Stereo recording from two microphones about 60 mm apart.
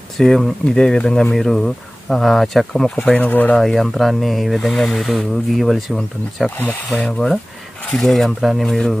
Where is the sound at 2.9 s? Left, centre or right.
Centre.